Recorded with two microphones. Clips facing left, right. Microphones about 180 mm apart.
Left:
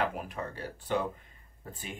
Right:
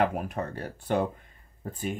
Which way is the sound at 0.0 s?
50° right (ahead or behind).